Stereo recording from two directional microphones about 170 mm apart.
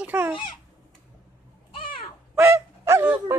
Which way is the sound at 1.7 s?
30° left (ahead or behind).